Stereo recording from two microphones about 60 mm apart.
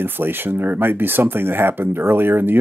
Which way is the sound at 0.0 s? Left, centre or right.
Right.